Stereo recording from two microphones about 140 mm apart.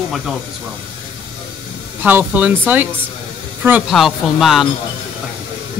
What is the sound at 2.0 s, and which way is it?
Speech, 15° right (ahead or behind).